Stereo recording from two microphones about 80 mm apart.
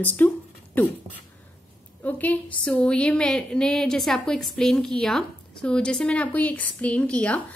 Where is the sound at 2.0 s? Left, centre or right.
Left.